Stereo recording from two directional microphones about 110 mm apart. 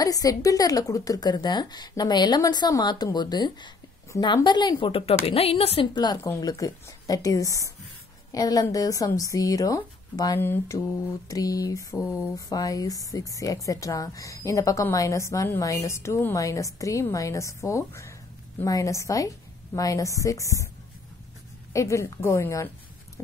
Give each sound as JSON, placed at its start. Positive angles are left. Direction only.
{"t": 0.0, "sound": "a woman's voice", "side_deg": 35}
{"t": 5.0, "sound": "a woman's voice", "side_deg": 60}
{"t": 5.9, "sound": "a woman's voice", "side_deg": 40}
{"t": 10.4, "sound": "speech", "side_deg": 20}
{"t": 11.2, "sound": "a woman's voice", "side_deg": 35}
{"t": 21.7, "sound": "speech", "side_deg": 30}